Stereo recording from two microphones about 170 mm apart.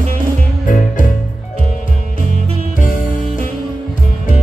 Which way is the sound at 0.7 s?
50° left (ahead or behind).